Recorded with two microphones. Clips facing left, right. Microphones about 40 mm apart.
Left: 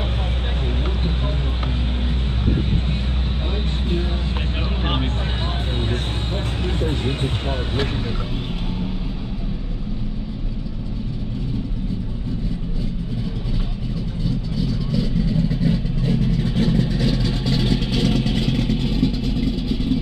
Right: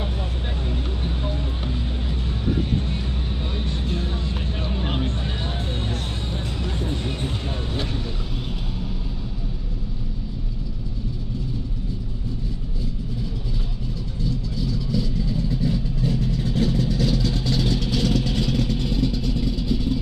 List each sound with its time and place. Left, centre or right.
0.7 s vehicle: left
14.2 s vehicle: left